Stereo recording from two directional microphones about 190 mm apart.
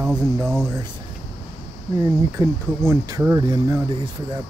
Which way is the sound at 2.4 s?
20° right (ahead or behind).